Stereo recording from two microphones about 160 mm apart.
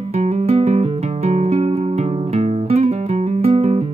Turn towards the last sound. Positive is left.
turn(degrees=-40)  # may be behind; listen again after turning